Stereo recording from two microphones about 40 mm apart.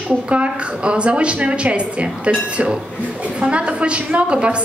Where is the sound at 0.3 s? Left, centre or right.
Right.